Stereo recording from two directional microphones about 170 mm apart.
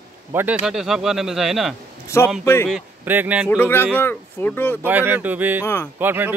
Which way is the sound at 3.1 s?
10° right (ahead or behind).